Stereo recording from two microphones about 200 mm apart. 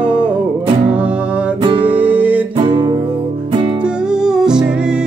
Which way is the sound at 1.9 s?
5° right (ahead or behind).